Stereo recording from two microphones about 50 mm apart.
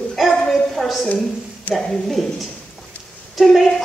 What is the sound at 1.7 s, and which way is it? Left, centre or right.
Speech, left.